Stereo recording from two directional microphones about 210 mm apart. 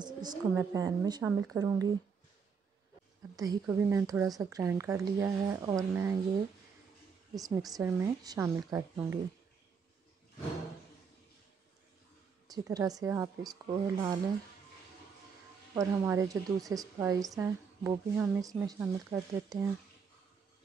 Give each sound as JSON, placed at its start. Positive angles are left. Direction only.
{"t": 0.0, "sound": "a woman's voice", "side_deg": -20}
{"t": 3.3, "sound": "a woman's voice", "side_deg": -15}
{"t": 7.3, "sound": "a woman's voice", "side_deg": -15}
{"t": 12.4, "sound": "a woman's voice", "side_deg": -15}
{"t": 15.7, "sound": "a woman's voice", "side_deg": -15}